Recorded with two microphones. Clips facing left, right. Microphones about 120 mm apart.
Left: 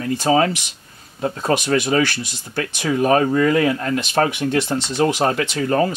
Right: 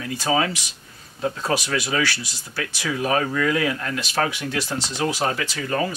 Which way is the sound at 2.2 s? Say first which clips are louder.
Left 5 dB; 55° left (ahead or behind).